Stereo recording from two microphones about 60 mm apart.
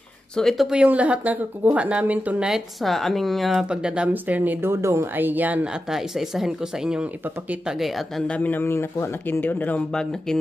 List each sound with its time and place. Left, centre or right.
0.4 s speech: centre
0.8 s speech: right
2.8 s speech: centre
3.7 s speech: centre
4.1 s speech: right
4.6 s speech: right
5.1 s speech: right
5.9 s speech: centre
8.3 s speech: left
8.6 s speech: left
9.3 s speech: left
9.9 s speech: centre